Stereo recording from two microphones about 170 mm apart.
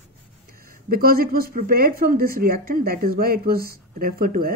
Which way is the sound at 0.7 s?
60° right (ahead or behind).